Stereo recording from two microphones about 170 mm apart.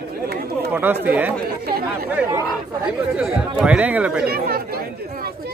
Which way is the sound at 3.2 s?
5° right (ahead or behind).